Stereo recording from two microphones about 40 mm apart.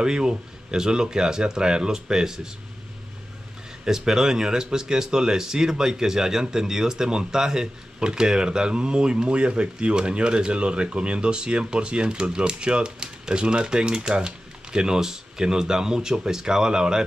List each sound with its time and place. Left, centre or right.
0.0 s speech: centre
3.8 s speech: centre